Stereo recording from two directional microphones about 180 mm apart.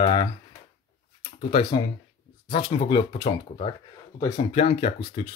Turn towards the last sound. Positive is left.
turn(degrees=30)  # may be behind; listen again after turning